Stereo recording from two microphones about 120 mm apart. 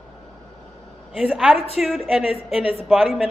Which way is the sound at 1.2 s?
10° right (ahead or behind).